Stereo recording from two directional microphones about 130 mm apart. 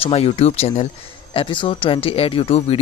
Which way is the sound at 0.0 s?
50° left (ahead or behind).